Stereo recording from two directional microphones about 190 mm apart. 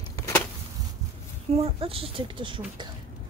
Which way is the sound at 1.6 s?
30° right (ahead or behind).